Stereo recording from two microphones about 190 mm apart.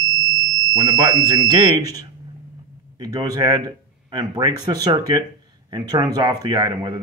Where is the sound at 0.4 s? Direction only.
20° right (ahead or behind).